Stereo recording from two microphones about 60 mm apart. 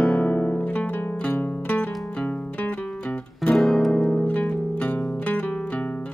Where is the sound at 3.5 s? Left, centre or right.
Centre.